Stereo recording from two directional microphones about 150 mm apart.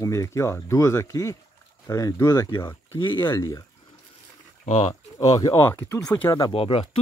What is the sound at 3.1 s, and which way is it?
Speech, 15° left (ahead or behind).